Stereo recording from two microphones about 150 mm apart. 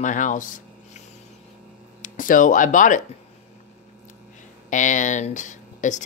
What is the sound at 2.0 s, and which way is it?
Speech, 60° left (ahead or behind).